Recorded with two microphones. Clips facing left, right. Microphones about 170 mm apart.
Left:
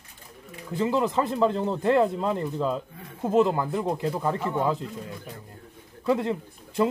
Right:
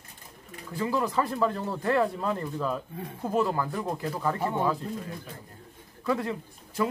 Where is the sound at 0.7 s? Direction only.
20° left (ahead or behind).